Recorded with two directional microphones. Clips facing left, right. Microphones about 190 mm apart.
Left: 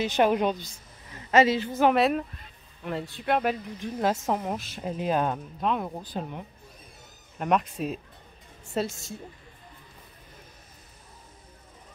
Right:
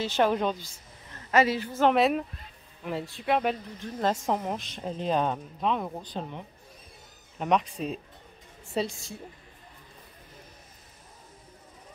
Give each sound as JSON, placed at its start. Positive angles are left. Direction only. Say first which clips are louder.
{"t": 0.0, "sound": "a woman's voice", "louder": "left 2 dB", "side_deg": 15}
{"t": 1.8, "sound": "speech", "louder": "even", "side_deg": 5}